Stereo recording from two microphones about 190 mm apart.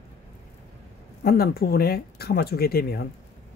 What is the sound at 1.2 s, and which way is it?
Speech, 55° left (ahead or behind).